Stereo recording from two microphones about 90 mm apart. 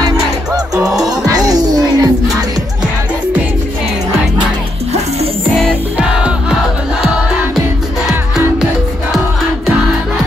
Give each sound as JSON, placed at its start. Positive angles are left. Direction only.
{"t": 0.8, "sound": "music", "side_deg": -5}
{"t": 1.5, "sound": "music", "side_deg": -45}
{"t": 5.9, "sound": "music", "side_deg": -10}